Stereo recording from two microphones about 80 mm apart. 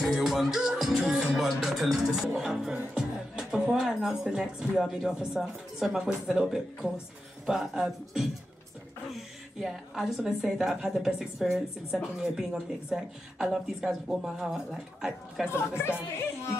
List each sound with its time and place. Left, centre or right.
0.0 s music: centre
7.4 s speech: centre
9.6 s speech: centre
15.5 s speech: left